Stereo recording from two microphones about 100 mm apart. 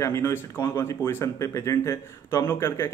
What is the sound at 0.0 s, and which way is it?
Speech, 30° left (ahead or behind).